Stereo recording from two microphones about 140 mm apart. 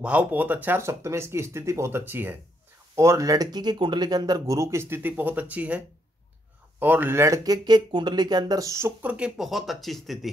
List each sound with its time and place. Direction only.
0.0 s speech: 10° right (ahead or behind)